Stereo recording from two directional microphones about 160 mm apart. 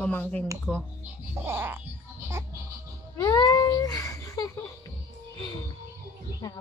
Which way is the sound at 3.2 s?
25° left (ahead or behind).